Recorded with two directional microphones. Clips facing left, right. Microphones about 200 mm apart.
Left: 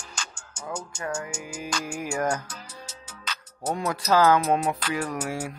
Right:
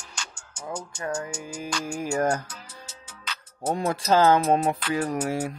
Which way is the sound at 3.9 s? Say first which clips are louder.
Right 1 dB; 25° right (ahead or behind).